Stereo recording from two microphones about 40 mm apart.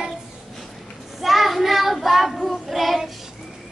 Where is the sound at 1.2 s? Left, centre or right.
Centre.